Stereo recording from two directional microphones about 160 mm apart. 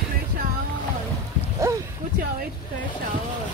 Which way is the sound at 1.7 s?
20° right (ahead or behind).